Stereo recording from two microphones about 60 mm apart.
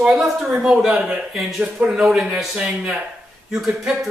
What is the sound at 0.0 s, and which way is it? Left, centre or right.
Speech, centre.